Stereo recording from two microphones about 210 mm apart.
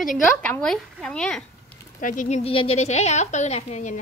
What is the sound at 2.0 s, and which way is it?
A woman's voice, 40° left (ahead or behind).